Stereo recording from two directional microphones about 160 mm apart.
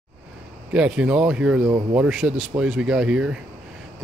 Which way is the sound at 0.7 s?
5° right (ahead or behind).